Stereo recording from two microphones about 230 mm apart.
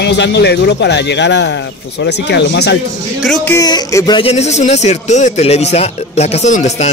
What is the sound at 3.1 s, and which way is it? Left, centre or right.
Speech, centre.